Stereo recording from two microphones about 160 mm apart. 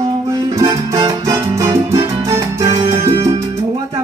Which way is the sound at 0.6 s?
20° right (ahead or behind).